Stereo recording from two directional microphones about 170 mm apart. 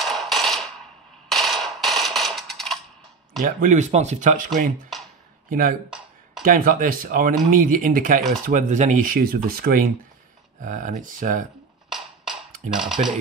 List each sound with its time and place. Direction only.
0.0 s a sound: centre (ahead or behind)
3.4 s speech: 50° right (ahead or behind)
5.5 s speech: 50° right (ahead or behind)
5.9 s a sound: 5° right (ahead or behind)
6.4 s speech: 55° right (ahead or behind)
10.6 s speech: 50° right (ahead or behind)
12.7 s speech: 5° right (ahead or behind)